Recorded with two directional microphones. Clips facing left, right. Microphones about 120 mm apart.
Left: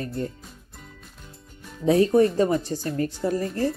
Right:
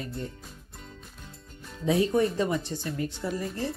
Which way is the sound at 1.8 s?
45° left (ahead or behind).